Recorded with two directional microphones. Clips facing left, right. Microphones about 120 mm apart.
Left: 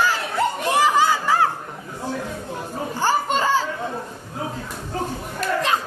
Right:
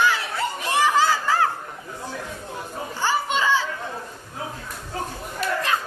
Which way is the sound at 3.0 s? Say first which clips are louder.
Left 2 dB; 45° left (ahead or behind).